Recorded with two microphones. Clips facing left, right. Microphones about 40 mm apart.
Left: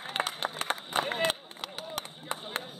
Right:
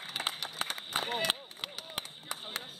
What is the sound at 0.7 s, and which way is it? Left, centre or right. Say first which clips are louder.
Run: left 7 dB; left.